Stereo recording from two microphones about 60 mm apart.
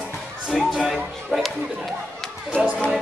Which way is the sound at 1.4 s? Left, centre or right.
Centre.